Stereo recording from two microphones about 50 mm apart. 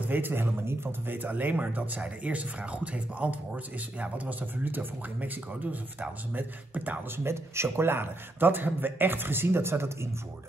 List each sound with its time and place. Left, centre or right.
0.0 s speech: right
4.0 s speech: right
7.2 s a man's voice: right